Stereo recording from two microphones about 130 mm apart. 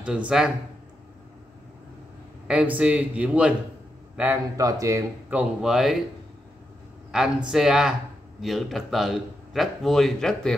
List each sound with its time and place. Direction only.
0.0 s speech: 10° right (ahead or behind)
2.4 s speech: 10° right (ahead or behind)
4.6 s speech: 25° right (ahead or behind)
5.3 s speech: 5° right (ahead or behind)
7.1 s speech: 5° right (ahead or behind)